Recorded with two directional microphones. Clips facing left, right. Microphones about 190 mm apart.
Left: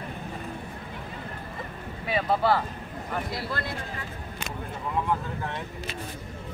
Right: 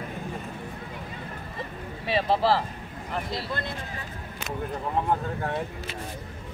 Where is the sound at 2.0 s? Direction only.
30° right (ahead or behind).